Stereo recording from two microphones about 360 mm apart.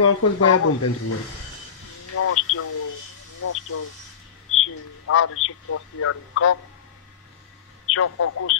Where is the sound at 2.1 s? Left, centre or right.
Left.